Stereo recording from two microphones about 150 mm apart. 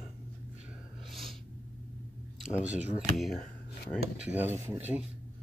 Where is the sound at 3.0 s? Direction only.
Centre (ahead or behind).